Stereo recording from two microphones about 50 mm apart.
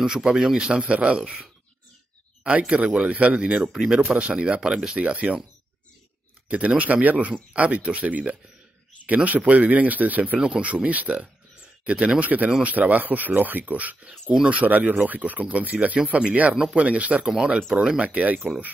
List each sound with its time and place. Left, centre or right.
0.0 s speech: centre
3.6 s speech: centre
4.0 s speech: right
4.9 s speech: right
6.5 s speech: right